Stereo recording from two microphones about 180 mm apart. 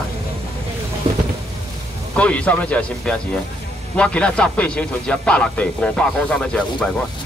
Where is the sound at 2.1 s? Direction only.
5° left (ahead or behind).